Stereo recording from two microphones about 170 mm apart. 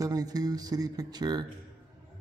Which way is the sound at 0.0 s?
20° right (ahead or behind).